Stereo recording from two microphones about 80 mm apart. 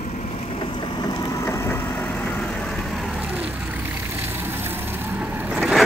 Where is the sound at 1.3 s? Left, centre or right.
Left.